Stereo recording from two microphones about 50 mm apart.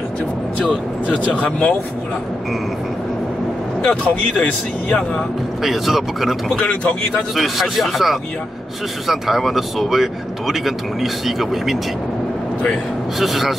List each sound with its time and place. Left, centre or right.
1.0 s speech: left
3.8 s speech: left
5.6 s speech: centre
6.6 s speech: left
7.3 s speech: centre
13.2 s speech: centre